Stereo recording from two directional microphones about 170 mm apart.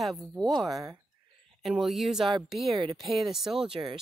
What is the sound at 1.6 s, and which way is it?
Speech, centre (ahead or behind).